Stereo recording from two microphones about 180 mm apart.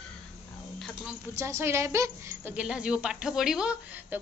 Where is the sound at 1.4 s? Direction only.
15° right (ahead or behind).